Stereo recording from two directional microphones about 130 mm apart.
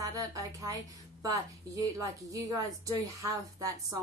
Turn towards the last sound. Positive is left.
turn(degrees=-25)  # may be behind; listen again after turning